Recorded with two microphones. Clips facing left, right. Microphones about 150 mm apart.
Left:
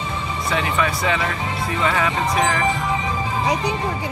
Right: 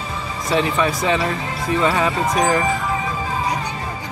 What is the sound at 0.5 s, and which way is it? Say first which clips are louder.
Speech: right 4 dB; 30° right (ahead or behind).